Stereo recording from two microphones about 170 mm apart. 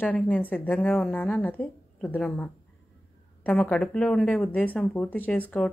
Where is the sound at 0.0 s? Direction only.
10° left (ahead or behind).